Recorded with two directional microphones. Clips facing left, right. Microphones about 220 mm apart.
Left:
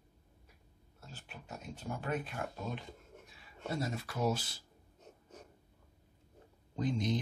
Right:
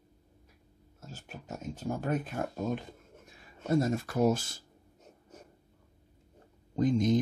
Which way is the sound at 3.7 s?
45° right (ahead or behind).